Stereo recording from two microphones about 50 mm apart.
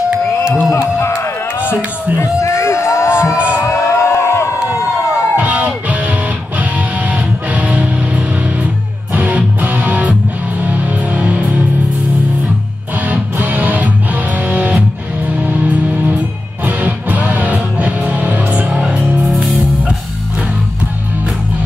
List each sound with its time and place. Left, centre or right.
0.7 s crowd: left
2.2 s a sound: left
3.2 s music: right
3.6 s a sound: left
5.1 s crowd: right
5.9 s music: right
13.0 s music: right
18.7 s music: centre
19.1 s music: centre